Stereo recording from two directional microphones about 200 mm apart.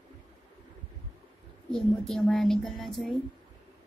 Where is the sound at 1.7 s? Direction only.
Centre (ahead or behind).